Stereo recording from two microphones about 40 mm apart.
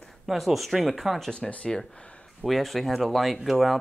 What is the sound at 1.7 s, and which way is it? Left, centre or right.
Speech, centre.